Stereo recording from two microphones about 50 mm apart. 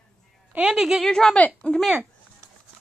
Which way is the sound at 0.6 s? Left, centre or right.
Centre.